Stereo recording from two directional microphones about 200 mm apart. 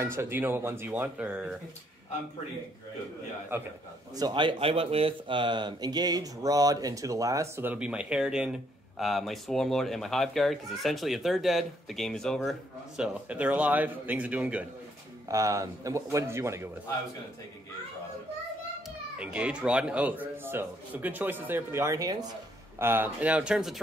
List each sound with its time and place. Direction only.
0.0 s speech: 15° right (ahead or behind)
3.5 s speech: 10° right (ahead or behind)
4.1 s speech: 20° right (ahead or behind)
19.1 s speech: 5° right (ahead or behind)